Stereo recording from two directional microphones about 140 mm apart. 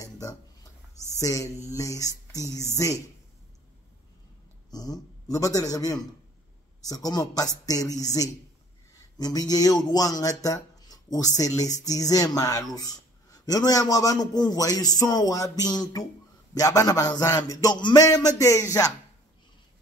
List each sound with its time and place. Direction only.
0.0 s a sound: 25° left (ahead or behind)
1.1 s speech: 25° left (ahead or behind)
4.6 s a man's voice: 30° left (ahead or behind)